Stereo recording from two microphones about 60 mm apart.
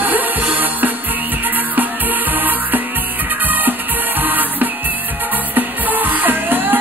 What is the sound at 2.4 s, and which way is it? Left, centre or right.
Music, right.